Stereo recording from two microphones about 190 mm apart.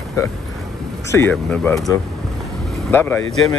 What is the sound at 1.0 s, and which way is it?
Speech, 15° left (ahead or behind).